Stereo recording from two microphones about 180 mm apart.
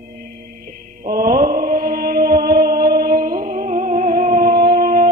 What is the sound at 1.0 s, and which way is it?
Mantra, 50° right (ahead or behind).